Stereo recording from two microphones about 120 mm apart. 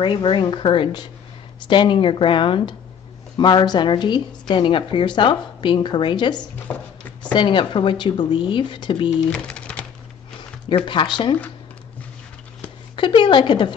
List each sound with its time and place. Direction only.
0.0 s a woman's voice: 45° left (ahead or behind)
6.7 s speech: 15° left (ahead or behind)
7.3 s speech: 45° left (ahead or behind)
9.3 s typing: 10° left (ahead or behind)
10.9 s speech: 40° left (ahead or behind)
12.9 s a woman's voice: 45° left (ahead or behind)